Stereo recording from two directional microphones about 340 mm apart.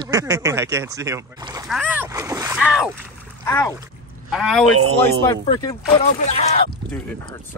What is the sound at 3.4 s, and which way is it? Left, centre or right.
Speech, centre.